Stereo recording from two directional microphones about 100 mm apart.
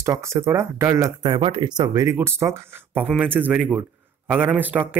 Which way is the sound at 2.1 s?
25° right (ahead or behind).